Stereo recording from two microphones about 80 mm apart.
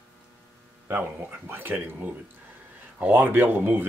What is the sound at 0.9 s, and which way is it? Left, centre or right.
Speech, right.